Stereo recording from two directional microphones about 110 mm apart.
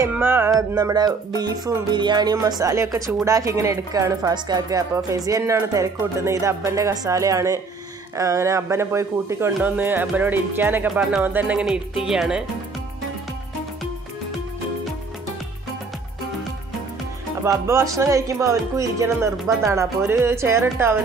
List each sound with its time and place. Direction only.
0.2 s speech: 20° right (ahead or behind)
0.5 s speech: 30° right (ahead or behind)
5.4 s speech: 20° right (ahead or behind)
9.6 s music: 15° right (ahead or behind)
12.0 s speech: 5° right (ahead or behind)
17.4 s speech: 25° right (ahead or behind)